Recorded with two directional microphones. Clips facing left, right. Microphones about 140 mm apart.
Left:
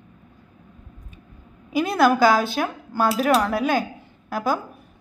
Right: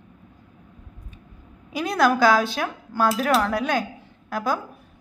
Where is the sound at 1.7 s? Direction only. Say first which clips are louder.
Left 2 dB; centre (ahead or behind).